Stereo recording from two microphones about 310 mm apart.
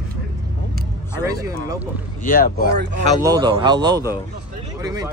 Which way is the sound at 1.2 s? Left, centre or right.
Centre.